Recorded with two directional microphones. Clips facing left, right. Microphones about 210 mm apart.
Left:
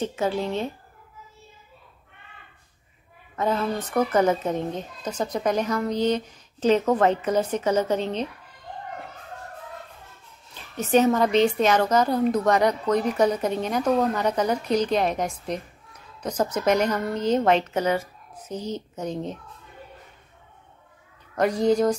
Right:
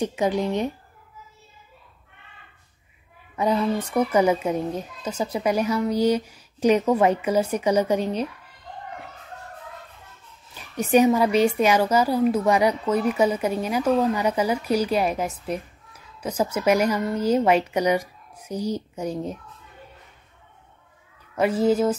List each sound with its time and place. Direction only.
0.0 s a woman's voice: 15° right (ahead or behind)
3.3 s a woman's voice: 10° right (ahead or behind)
10.8 s a woman's voice: 10° right (ahead or behind)
21.4 s a woman's voice: 5° right (ahead or behind)